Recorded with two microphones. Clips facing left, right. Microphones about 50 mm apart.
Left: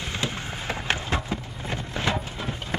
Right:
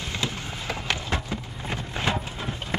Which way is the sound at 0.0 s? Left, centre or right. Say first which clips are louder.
Left 1 dB; left.